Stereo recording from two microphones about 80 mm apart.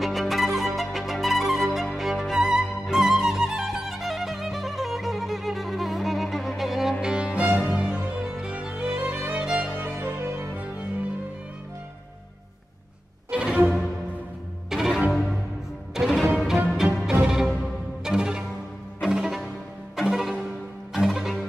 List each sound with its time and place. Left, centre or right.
0.0 s music: centre; by 10.9 s right
13.3 s music: centre
14.7 s music: centre